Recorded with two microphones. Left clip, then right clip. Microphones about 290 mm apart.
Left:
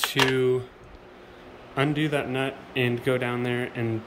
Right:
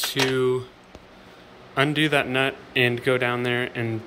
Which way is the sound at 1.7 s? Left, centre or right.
Centre.